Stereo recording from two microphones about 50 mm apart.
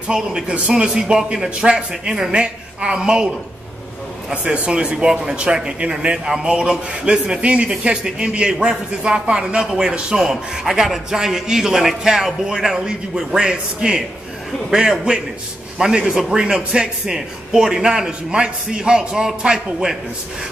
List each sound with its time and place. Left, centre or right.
0.1 s a man's voice: centre
4.3 s a man's voice: right